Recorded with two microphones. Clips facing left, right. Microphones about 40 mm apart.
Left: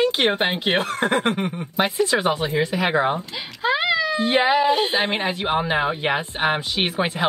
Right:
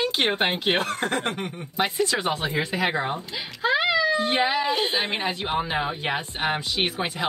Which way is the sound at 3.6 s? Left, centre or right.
Centre.